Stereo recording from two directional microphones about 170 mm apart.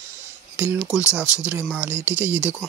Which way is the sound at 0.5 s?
10° right (ahead or behind).